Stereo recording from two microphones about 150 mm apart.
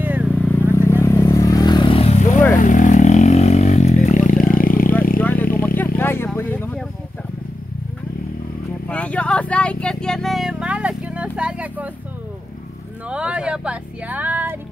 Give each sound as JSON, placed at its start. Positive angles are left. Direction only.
{"t": 0.0, "sound": "vehicle", "side_deg": -10}
{"t": 0.3, "sound": "vehicle", "side_deg": 10}
{"t": 2.6, "sound": "vehicle", "side_deg": 55}
{"t": 5.2, "sound": "vehicle", "side_deg": 15}
{"t": 6.3, "sound": "a sound", "side_deg": 15}
{"t": 8.8, "sound": "vehicle", "side_deg": 10}
{"t": 13.1, "sound": "music", "side_deg": -5}